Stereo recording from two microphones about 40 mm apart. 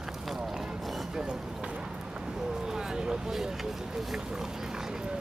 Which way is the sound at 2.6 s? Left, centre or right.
Centre.